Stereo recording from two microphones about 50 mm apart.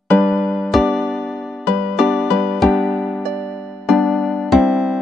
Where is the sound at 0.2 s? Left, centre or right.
Centre.